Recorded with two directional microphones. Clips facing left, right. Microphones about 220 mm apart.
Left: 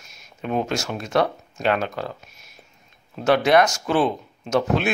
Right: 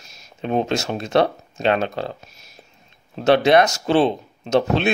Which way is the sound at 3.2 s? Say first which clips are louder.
Right 2 dB; 25° right (ahead or behind).